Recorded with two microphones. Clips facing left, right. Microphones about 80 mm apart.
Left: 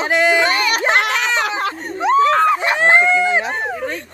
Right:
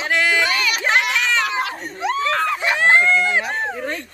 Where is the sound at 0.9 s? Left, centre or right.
Left.